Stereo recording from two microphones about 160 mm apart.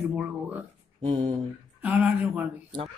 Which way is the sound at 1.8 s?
10° right (ahead or behind).